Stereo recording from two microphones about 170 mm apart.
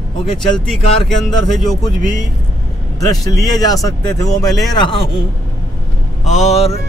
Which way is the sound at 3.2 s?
20° left (ahead or behind).